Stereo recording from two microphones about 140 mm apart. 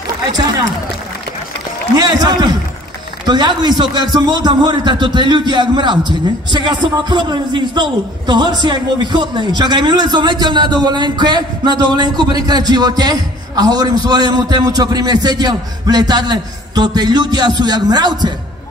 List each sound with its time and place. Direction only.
2.0 s a man's voice: 30° right (ahead or behind)